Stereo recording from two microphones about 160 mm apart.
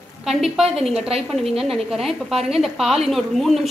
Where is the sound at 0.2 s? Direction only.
Centre (ahead or behind).